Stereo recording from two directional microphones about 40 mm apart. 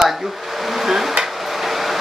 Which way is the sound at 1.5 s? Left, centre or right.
Centre.